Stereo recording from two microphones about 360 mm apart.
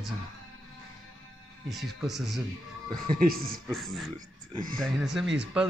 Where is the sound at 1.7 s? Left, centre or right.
Centre.